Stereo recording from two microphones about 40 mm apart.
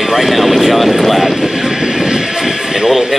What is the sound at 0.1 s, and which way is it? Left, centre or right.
A man's voice, centre.